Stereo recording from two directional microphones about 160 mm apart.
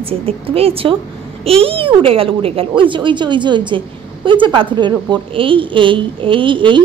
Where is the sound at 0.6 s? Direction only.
35° right (ahead or behind).